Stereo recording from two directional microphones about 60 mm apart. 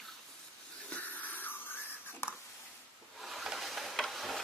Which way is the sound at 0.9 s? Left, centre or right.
Left.